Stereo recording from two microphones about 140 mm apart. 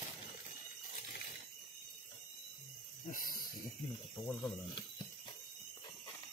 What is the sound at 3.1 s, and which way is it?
Snake, 90° left.